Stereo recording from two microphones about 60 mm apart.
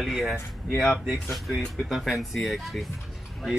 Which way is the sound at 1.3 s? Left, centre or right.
Centre.